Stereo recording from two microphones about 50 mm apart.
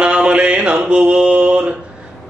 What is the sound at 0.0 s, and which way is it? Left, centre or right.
Mantra, right.